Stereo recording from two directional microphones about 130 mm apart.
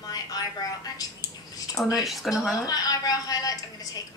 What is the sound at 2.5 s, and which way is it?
A woman's voice, 30° left (ahead or behind).